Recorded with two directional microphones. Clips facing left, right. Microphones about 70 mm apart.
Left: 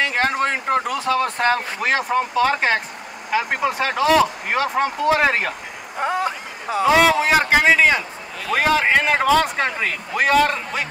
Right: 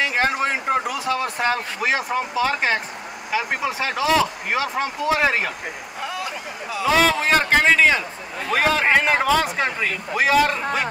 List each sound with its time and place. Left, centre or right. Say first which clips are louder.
0.0 s a man's voice: left 1 dB; centre
5.9 s vehicle: left 9 dB; left
6.9 s a man's voice: left 2 dB; centre